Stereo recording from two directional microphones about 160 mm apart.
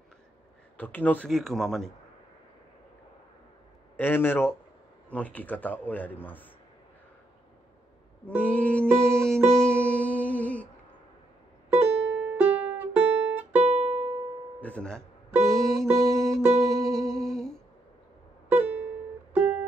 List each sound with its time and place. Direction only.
0.7 s speech: 10° left (ahead or behind)
3.9 s speech: 15° left (ahead or behind)
8.4 s speech: 10° left (ahead or behind)
8.9 s music: 5° left (ahead or behind)
11.7 s music: 10° right (ahead or behind)
13.7 s music: 45° right (ahead or behind)
14.6 s music: 5° left (ahead or behind)
17.1 s humming: centre (ahead or behind)
18.5 s music: 10° right (ahead or behind)